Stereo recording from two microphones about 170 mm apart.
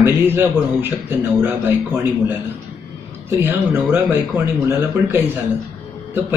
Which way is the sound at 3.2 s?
15° right (ahead or behind).